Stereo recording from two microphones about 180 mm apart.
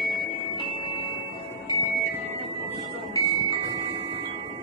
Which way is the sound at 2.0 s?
35° right (ahead or behind).